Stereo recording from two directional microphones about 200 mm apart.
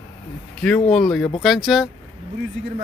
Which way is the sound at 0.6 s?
5° left (ahead or behind).